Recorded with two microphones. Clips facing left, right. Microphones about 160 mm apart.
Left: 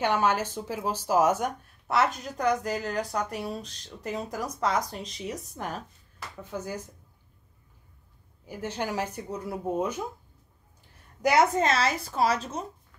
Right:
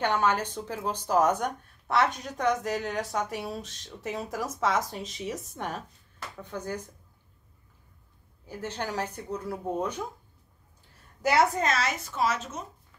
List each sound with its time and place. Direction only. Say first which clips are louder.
0.0 s speech: left 1 dB; 10° left (ahead or behind)
8.5 s speech: left 2 dB; 10° left (ahead or behind)
11.2 s a woman's voice: left 2 dB; 20° left (ahead or behind)